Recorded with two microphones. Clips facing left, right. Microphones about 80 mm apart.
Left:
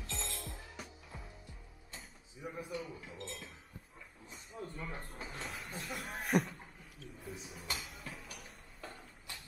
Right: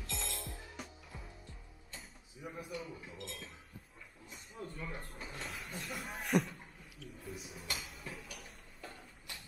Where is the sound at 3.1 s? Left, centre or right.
Left.